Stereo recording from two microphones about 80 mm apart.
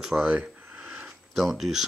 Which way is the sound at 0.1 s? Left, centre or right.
Centre.